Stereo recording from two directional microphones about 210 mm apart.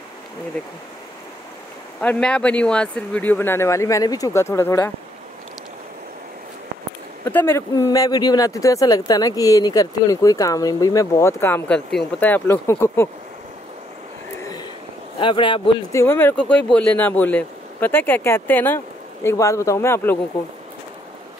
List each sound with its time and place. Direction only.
2.0 s speech: 5° left (ahead or behind)
7.2 s speech: 10° left (ahead or behind)
14.4 s a sound: 20° left (ahead or behind)
15.1 s speech: 25° left (ahead or behind)
16.0 s speech: 10° left (ahead or behind)